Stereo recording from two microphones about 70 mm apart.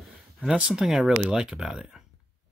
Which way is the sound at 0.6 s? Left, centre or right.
Centre.